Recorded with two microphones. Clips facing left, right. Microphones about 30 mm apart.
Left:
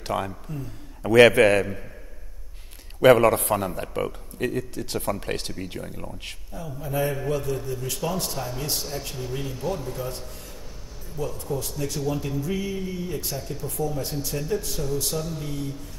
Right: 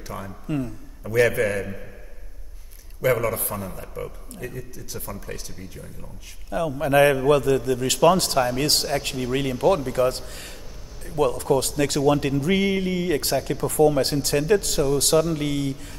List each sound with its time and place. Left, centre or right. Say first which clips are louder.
0.0 s a man's voice: left 6 dB; left
3.0 s a man's voice: left 6 dB; left
6.5 s a man's voice: right 11 dB; right